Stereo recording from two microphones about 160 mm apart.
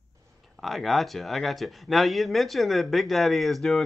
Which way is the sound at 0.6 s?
Centre (ahead or behind).